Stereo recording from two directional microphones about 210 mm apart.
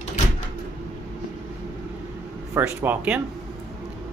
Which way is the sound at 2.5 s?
10° right (ahead or behind).